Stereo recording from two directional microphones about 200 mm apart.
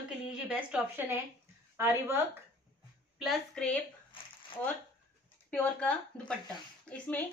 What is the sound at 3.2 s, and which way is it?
Speech, centre (ahead or behind).